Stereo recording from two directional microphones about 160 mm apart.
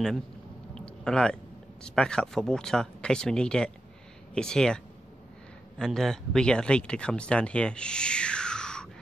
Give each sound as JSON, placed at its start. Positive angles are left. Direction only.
{"t": 0.7, "sound": "speech", "side_deg": 5}